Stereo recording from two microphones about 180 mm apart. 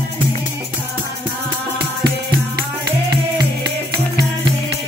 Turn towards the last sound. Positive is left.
turn(degrees=-20)  # may be behind; listen again after turning